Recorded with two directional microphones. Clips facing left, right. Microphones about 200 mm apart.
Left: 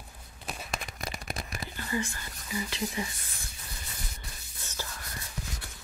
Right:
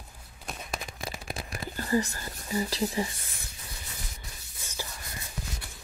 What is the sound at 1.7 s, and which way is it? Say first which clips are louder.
Speech: right 6 dB; 40° right (ahead or behind).